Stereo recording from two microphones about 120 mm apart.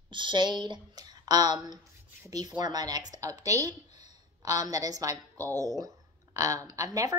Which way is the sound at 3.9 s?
75° left (ahead or behind).